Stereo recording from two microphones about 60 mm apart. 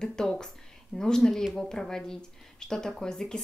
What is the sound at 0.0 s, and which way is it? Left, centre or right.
Speech, centre.